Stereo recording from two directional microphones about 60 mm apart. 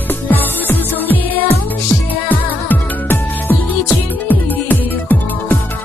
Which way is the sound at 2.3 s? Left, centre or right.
Left.